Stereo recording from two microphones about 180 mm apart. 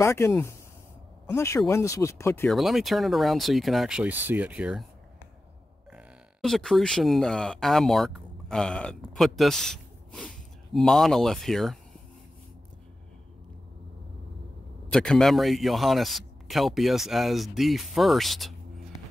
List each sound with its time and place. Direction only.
0.0 s speech: 15° left (ahead or behind)
2.5 s a man's voice: centre (ahead or behind)
5.9 s speech: centre (ahead or behind)
14.9 s a man's voice: 5° left (ahead or behind)